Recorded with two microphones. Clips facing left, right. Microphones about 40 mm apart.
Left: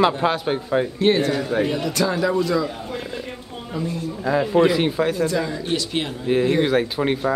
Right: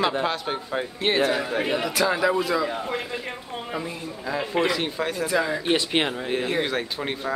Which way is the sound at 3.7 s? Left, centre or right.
Right.